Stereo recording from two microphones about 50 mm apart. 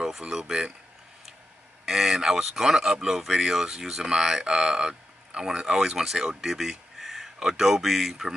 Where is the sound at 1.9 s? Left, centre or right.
Centre.